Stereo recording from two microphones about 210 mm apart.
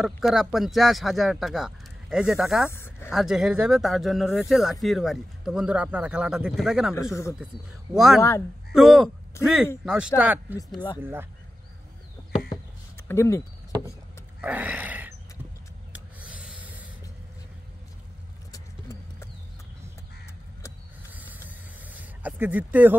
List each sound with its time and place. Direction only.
0.0 s speech: centre (ahead or behind)
2.7 s speech: 10° left (ahead or behind)
3.1 s speech: centre (ahead or behind)
12.2 s a sound: 20° left (ahead or behind)
13.1 s speech: 15° left (ahead or behind)
14.4 s a sound: 5° right (ahead or behind)
18.5 s vehicle: 15° left (ahead or behind)
21.1 s snake: 10° right (ahead or behind)